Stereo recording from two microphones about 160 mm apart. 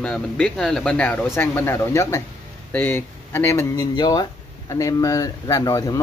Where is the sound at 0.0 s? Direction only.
5° left (ahead or behind).